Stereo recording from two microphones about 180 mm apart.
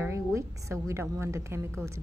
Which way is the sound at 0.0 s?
15° right (ahead or behind).